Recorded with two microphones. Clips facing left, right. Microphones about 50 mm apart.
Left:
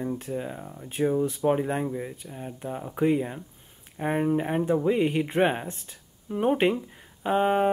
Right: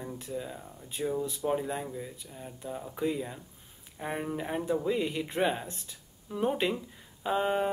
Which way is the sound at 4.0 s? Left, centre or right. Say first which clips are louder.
Left 9 dB; left.